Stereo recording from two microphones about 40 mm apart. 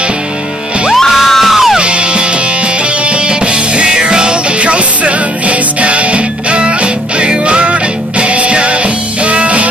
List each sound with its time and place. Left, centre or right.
0.9 s music: centre
1.8 s music: right